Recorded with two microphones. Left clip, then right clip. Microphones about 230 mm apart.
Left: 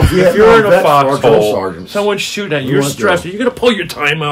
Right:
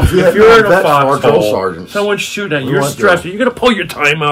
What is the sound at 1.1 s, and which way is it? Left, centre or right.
Speech, centre.